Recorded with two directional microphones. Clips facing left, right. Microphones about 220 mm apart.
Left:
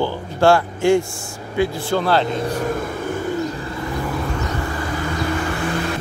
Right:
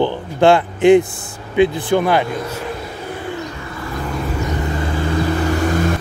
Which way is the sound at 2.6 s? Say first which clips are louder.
Left 4 dB; 45° left (ahead or behind).